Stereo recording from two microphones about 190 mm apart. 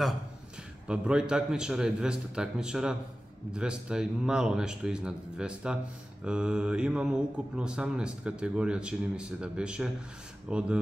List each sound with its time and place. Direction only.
0.8 s speech: 5° right (ahead or behind)